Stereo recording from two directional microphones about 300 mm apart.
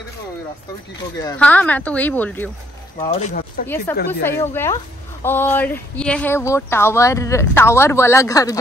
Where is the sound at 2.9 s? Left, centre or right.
Left.